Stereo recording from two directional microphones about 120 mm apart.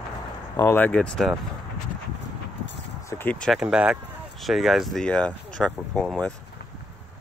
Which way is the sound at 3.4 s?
5° right (ahead or behind).